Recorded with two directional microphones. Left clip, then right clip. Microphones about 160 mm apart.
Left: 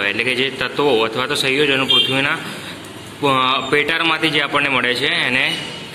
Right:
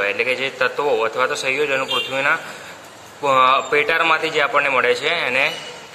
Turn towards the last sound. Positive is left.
turn(degrees=-15)  # may be behind; listen again after turning